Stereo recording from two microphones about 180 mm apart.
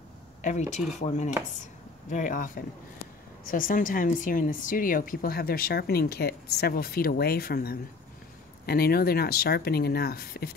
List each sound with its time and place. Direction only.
0.4 s a woman's voice: 40° left (ahead or behind); by 10.5 s 60° left (ahead or behind)